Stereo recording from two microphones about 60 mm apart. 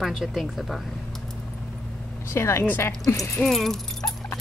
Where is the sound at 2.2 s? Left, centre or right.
Left.